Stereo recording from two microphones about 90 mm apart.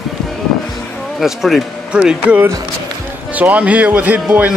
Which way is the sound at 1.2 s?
5° right (ahead or behind).